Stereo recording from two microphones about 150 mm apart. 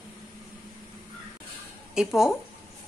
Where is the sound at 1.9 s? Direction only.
5° right (ahead or behind).